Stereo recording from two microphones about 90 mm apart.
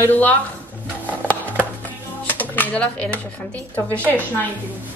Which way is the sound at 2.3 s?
20° left (ahead or behind).